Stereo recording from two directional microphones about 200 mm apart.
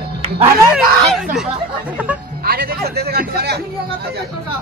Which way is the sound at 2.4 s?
50° right (ahead or behind).